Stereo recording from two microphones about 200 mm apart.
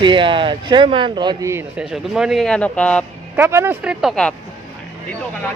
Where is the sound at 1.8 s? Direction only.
5° right (ahead or behind).